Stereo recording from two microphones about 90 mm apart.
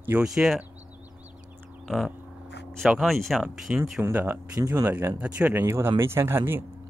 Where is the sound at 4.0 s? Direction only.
25° right (ahead or behind).